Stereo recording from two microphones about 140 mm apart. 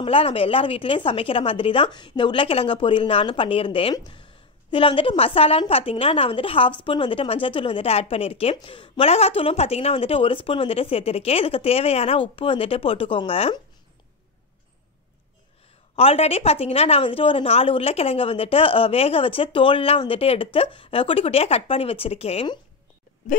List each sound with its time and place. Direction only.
0.0 s a woman's voice: 40° left (ahead or behind)
16.0 s speech: 45° left (ahead or behind)